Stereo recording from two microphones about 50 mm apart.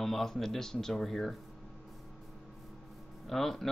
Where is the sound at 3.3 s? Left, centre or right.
Centre.